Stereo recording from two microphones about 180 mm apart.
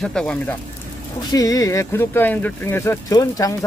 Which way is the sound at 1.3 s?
20° left (ahead or behind).